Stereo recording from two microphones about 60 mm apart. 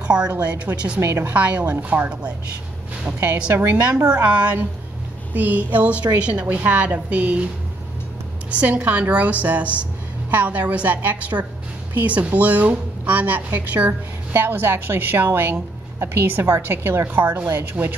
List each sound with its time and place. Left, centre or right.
0.3 s a woman's voice: right
1.0 s a woman's voice: right
1.3 s a woman's voice: right
8.5 s a woman's voice: right
14.3 s a woman's voice: right
17.8 s a woman's voice: right